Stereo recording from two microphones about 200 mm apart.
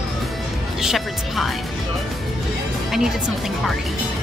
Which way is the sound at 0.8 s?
Centre (ahead or behind).